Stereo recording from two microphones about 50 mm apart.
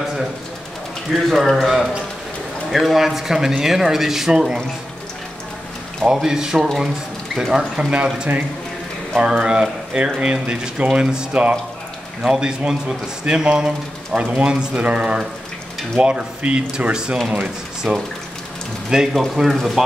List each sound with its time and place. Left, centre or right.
1.1 s a man's voice: centre
6.0 s speech: centre
19.3 s a man's voice: centre